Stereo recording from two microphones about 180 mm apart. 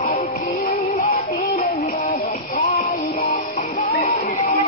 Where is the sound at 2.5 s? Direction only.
45° left (ahead or behind).